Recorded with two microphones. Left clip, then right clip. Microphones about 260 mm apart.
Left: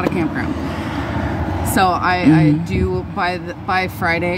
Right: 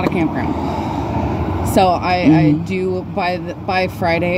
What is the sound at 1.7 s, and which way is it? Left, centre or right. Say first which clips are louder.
Speech: right 1 dB; left.